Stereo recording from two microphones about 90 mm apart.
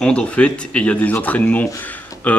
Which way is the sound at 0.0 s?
10° left (ahead or behind).